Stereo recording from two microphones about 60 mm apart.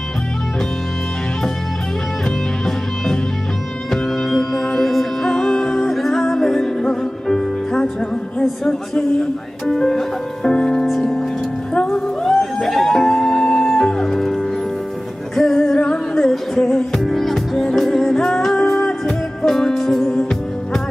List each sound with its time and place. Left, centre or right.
3.9 s music: centre
9.7 s music: centre
15.8 s music: centre
16.3 s music: centre